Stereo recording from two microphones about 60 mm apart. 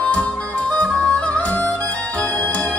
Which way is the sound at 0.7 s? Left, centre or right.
Left.